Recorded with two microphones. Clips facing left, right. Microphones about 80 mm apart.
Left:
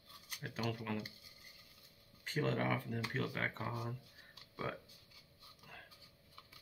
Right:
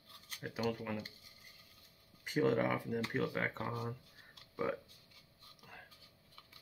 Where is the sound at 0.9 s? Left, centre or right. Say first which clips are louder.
Even; centre.